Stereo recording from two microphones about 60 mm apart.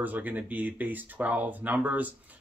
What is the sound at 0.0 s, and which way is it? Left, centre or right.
Speech, right.